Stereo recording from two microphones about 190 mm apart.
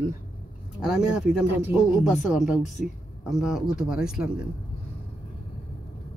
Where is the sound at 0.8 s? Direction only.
5° right (ahead or behind).